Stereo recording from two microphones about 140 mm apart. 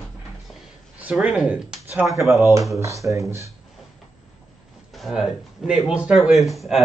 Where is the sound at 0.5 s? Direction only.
10° right (ahead or behind).